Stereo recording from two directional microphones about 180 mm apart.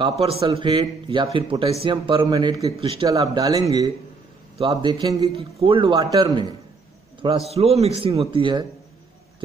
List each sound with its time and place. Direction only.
0.2 s a man's voice: 35° right (ahead or behind)
3.1 s a man's voice: 20° right (ahead or behind)